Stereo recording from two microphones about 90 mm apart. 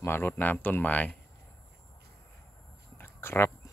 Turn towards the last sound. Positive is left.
turn(degrees=30)  # may be behind; listen again after turning